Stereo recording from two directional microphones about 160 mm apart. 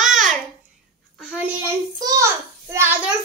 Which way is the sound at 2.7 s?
15° right (ahead or behind).